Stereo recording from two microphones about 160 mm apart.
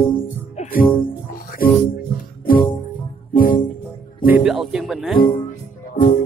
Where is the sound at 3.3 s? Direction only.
60° left (ahead or behind).